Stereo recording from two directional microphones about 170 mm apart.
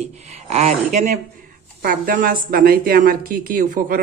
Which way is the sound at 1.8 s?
60° right (ahead or behind).